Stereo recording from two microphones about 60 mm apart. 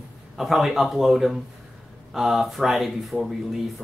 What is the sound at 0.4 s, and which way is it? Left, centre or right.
Speech, centre.